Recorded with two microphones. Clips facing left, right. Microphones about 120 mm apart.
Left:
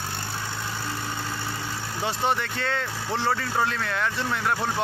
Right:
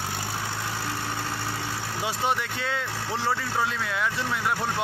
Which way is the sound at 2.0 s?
5° right (ahead or behind).